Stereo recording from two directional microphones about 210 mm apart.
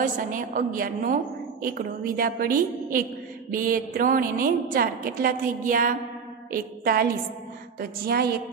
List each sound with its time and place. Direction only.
0.0 s a woman's voice: 40° right (ahead or behind)
3.5 s a woman's voice: 40° right (ahead or behind)